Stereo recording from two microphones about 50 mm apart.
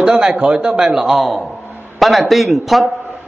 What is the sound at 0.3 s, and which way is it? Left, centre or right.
Speech, right.